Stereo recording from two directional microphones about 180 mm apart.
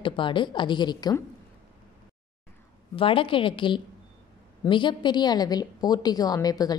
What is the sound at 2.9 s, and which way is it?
A woman's voice, 30° left (ahead or behind).